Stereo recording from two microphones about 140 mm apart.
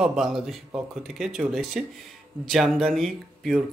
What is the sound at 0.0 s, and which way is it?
Speech, 5° right (ahead or behind).